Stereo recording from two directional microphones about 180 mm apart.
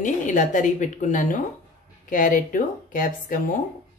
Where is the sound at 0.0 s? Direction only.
45° left (ahead or behind).